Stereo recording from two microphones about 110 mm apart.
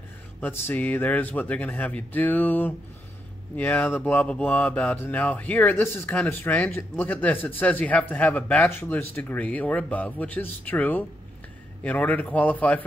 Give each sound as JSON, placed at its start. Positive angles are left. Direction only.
{"t": 0.4, "sound": "speech", "side_deg": 20}